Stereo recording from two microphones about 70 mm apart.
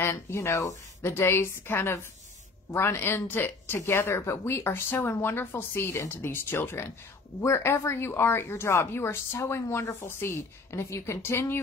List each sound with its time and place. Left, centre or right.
0.0 s speech: left
1.1 s speech: left